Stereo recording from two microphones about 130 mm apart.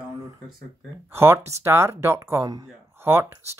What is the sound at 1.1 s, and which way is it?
Speech, 20° right (ahead or behind).